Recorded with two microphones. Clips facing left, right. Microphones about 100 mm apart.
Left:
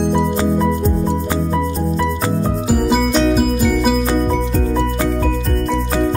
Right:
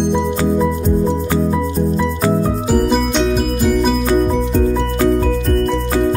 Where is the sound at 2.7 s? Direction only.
5° left (ahead or behind).